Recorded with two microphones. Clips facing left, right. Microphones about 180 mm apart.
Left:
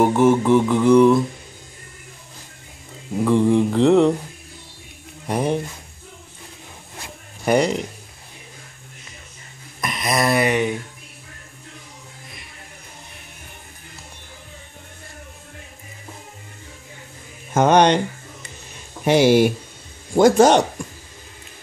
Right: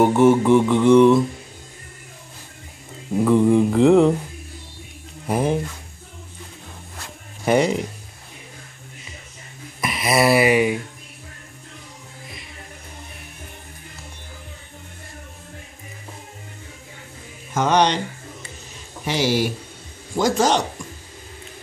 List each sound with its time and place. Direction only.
0.0 s mantra: centre (ahead or behind)
3.3 s mantra: 5° right (ahead or behind)
5.2 s speech: centre (ahead or behind)
7.4 s mantra: 5° right (ahead or behind)
9.8 s speech: 5° right (ahead or behind)
17.6 s speech: 55° left (ahead or behind)
19.0 s speech: 55° left (ahead or behind)